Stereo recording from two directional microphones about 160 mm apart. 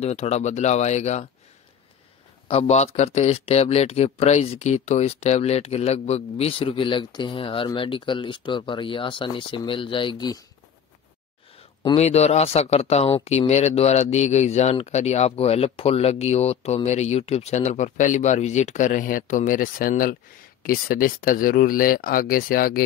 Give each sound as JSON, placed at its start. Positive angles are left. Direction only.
{"t": 0.0, "sound": "speech", "side_deg": 40}
{"t": 2.4, "sound": "speech", "side_deg": 40}
{"t": 12.0, "sound": "speech", "side_deg": 40}